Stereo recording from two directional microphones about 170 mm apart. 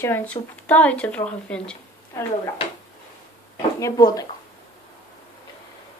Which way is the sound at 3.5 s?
20° left (ahead or behind).